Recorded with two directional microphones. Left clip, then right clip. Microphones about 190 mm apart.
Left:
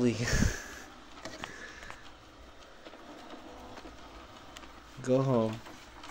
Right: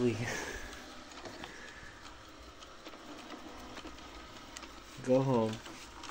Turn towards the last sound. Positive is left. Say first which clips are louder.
# left 1 dB
turn(degrees=40)  # may be behind; listen again after turning